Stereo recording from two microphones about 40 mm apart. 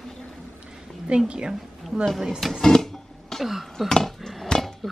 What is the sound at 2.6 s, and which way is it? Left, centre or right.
Music, centre.